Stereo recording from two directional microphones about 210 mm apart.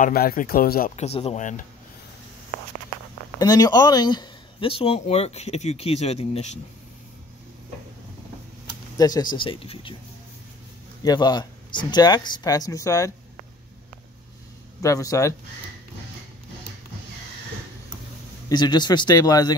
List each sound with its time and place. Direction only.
0.0 s speech: 45° left (ahead or behind)
3.3 s speech: 15° left (ahead or behind)
8.9 s speech: 20° left (ahead or behind)
11.0 s speech: 20° left (ahead or behind)
14.8 s a man's voice: 15° left (ahead or behind)
18.5 s speech: 20° left (ahead or behind)